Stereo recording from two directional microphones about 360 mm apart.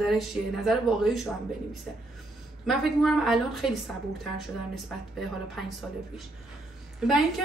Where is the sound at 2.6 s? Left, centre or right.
Centre.